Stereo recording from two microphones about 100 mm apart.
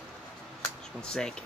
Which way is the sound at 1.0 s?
10° left (ahead or behind).